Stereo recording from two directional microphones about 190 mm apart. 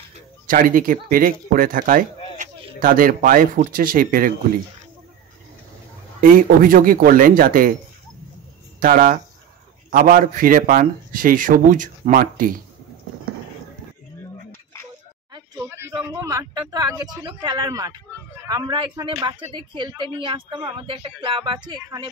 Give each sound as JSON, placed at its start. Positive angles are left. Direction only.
{"t": 0.5, "sound": "a man's voice", "side_deg": -45}
{"t": 6.2, "sound": "a man's voice", "side_deg": -45}
{"t": 8.7, "sound": "a man's voice", "side_deg": -45}
{"t": 14.5, "sound": "a sound", "side_deg": 15}
{"t": 15.3, "sound": "a sound", "side_deg": -20}
{"t": 17.1, "sound": "speech", "side_deg": -20}